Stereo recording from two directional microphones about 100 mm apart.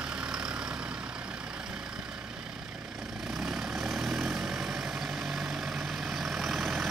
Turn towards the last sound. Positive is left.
turn(degrees=0)  # may be behind; listen again after turning